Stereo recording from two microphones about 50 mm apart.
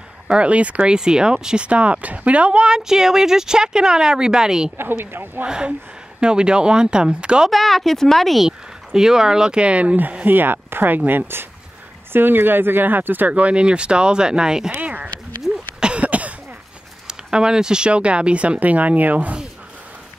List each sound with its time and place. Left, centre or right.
0.3 s speech: right
0.9 s speech: centre
4.7 s speech: right
5.4 s speech: centre
7.4 s a woman's voice: centre
8.5 s speech: centre
10.2 s speech: right
13.3 s speech: right
14.7 s speech: right
15.8 s cough: right
17.1 s speech: centre; by 19.3 s right